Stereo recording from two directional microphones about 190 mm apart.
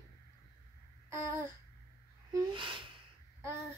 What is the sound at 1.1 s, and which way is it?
Babbling, 15° right (ahead or behind).